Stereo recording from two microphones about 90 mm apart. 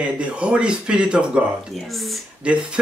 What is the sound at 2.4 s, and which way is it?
Speech, 15° right (ahead or behind).